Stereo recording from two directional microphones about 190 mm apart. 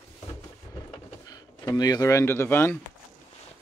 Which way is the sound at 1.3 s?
20° left (ahead or behind).